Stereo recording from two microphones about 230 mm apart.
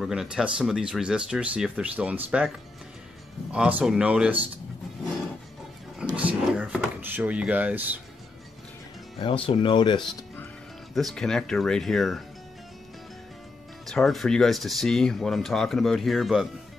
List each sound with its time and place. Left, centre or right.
0.0 s speech: centre
3.5 s speech: centre
6.1 s speech: centre
9.2 s speech: left
11.0 s speech: centre
13.8 s speech: centre